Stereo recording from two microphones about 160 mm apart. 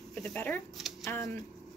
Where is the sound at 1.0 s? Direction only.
20° left (ahead or behind).